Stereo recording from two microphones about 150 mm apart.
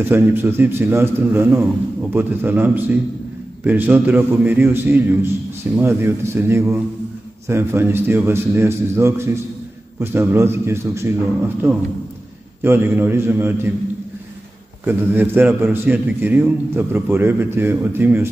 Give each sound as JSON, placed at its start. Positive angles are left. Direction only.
{"t": 0.0, "sound": "a man's voice", "side_deg": -15}
{"t": 14.9, "sound": "a man's voice", "side_deg": -10}